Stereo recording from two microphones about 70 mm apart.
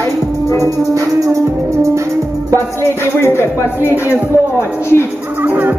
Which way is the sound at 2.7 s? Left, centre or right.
Left.